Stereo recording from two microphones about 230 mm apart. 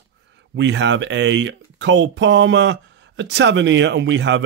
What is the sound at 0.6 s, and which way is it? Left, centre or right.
Speech, right.